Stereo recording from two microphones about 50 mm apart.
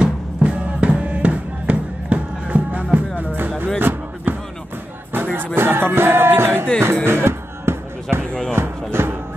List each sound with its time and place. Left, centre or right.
0.0 s music: right
3.3 s music: right
3.8 s a sound: right
5.1 s music: right
8.3 s a sound: left
8.9 s music: right